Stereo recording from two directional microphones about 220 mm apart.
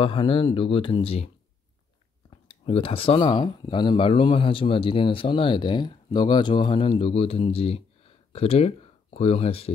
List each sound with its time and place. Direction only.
0.0 s speech: 25° left (ahead or behind)
2.4 s speech: 25° left (ahead or behind)